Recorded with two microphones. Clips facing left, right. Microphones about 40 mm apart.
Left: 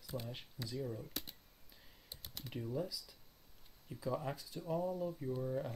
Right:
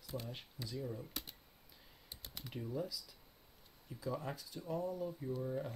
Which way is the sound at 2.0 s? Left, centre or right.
Centre.